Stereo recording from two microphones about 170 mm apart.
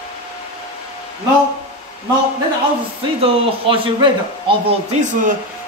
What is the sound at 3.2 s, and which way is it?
Speech, 30° right (ahead or behind).